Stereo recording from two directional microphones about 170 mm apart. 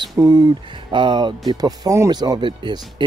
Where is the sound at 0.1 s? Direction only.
20° right (ahead or behind).